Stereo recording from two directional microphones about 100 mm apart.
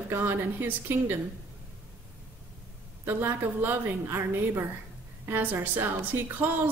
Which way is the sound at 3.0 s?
20° right (ahead or behind).